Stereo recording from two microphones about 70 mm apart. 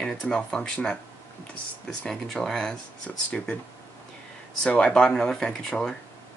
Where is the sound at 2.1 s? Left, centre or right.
Centre.